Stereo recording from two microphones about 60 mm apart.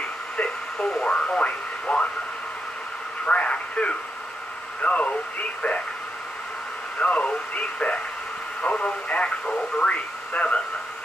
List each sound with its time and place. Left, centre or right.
0.4 s radio: centre
3.3 s radio: left
4.8 s speech: left
7.0 s speech: left